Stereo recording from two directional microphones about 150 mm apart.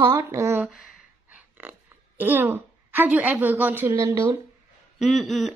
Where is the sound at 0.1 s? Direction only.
20° right (ahead or behind).